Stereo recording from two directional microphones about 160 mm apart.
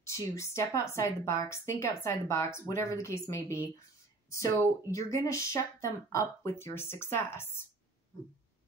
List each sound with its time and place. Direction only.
0.0 s a woman's voice: 20° left (ahead or behind)
4.9 s a woman's voice: 20° left (ahead or behind)